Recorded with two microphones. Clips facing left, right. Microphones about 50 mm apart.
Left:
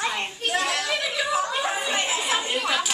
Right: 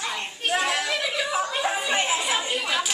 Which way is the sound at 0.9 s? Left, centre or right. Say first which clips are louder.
Left 1 dB; centre.